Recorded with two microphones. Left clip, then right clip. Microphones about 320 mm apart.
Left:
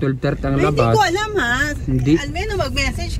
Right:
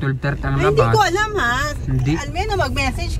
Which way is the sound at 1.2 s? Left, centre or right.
Right.